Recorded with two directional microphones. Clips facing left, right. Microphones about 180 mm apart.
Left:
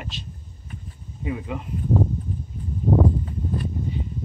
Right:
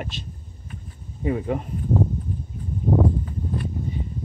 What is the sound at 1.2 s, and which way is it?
Speech, 45° right (ahead or behind).